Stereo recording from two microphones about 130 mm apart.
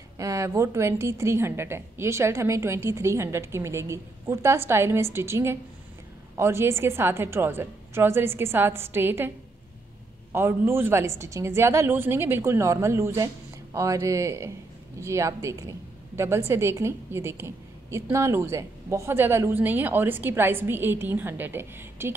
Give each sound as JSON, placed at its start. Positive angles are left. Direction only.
{"t": 0.2, "sound": "a woman's voice", "side_deg": -25}
{"t": 10.3, "sound": "a woman's voice", "side_deg": -20}